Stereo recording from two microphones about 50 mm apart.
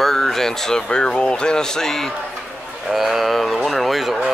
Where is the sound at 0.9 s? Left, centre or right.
Centre.